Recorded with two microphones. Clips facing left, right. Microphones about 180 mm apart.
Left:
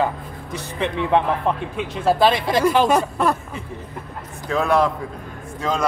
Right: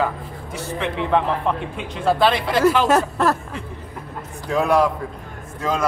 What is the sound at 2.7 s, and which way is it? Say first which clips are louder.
Speech: right 1 dB; 5° right (ahead or behind).